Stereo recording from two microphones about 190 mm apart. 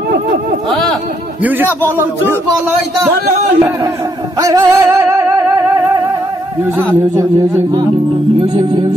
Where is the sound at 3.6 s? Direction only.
15° right (ahead or behind).